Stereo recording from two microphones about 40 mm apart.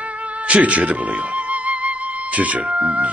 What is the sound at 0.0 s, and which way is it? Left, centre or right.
Music, right.